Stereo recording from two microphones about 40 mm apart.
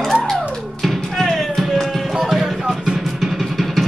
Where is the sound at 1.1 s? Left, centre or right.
Centre.